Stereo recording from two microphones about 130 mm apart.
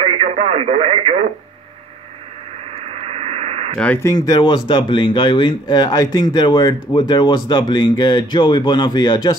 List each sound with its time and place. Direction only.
0.0 s radio: 50° right (ahead or behind)
2.7 s radio: 50° right (ahead or behind)
3.7 s speech: 10° left (ahead or behind)
4.0 s speech: 30° left (ahead or behind)